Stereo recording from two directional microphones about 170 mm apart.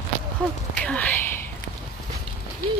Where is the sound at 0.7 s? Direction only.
5° left (ahead or behind).